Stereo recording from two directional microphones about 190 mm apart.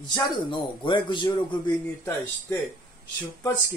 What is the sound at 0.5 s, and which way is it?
Speech, 25° left (ahead or behind).